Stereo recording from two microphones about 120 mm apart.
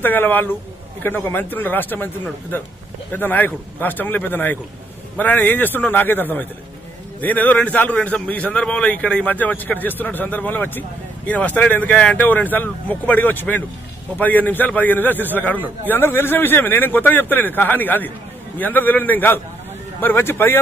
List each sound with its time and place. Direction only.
0.0 s speech: 15° left (ahead or behind)
3.1 s speech: 15° left (ahead or behind)